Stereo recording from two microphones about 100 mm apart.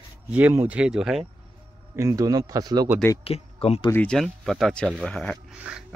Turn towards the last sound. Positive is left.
turn(degrees=-15)  # may be behind; listen again after turning